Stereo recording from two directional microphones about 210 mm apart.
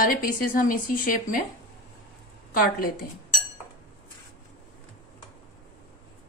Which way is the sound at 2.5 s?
45° left (ahead or behind).